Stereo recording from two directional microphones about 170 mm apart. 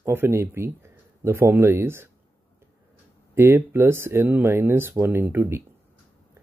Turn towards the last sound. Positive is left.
turn(degrees=-15)  # may be behind; listen again after turning